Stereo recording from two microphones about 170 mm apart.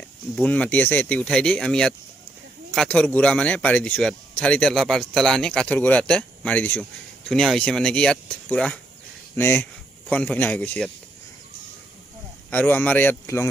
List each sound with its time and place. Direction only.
0.4 s speech: 10° left (ahead or behind)
12.4 s speech: 10° left (ahead or behind)